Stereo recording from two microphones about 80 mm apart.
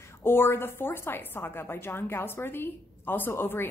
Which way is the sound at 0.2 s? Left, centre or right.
Left.